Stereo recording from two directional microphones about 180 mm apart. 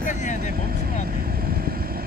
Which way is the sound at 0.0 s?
45° left (ahead or behind).